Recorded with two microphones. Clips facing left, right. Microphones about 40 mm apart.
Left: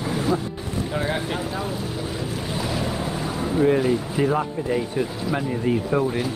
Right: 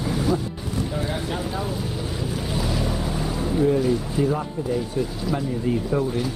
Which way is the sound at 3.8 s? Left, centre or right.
Left.